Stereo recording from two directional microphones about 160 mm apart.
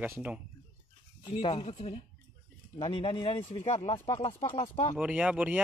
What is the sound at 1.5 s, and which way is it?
Speech, 40° left (ahead or behind).